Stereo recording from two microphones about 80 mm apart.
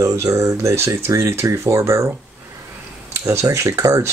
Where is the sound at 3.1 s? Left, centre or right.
Right.